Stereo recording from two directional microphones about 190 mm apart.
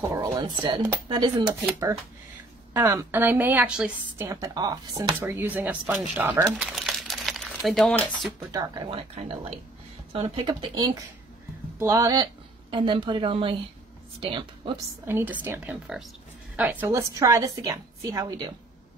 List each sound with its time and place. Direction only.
0.0 s a woman's voice: 20° right (ahead or behind)
4.3 s speech: 20° right (ahead or behind); by 8.3 s 5° left (ahead or behind)
8.4 s a woman's voice: 20° right (ahead or behind)
8.9 s a woman's voice: 30° right (ahead or behind)
15.0 s a woman's voice: 10° right (ahead or behind)